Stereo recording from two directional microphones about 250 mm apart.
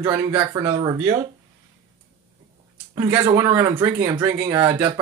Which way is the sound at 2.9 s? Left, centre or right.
Centre.